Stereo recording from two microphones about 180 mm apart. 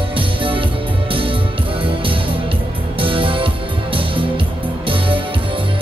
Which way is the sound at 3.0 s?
30° right (ahead or behind).